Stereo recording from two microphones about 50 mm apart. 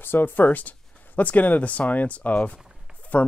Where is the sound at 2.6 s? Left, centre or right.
Centre.